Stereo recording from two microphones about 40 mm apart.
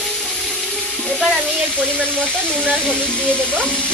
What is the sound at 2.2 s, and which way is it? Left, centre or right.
Speech, centre.